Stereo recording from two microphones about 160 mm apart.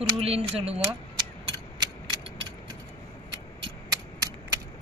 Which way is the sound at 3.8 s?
25° right (ahead or behind).